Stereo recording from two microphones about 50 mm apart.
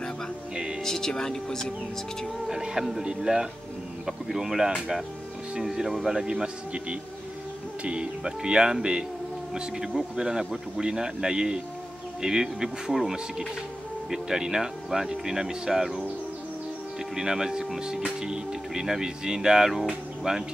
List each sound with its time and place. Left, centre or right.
0.8 s speech: centre
2.4 s speech: centre
17.1 s speech: centre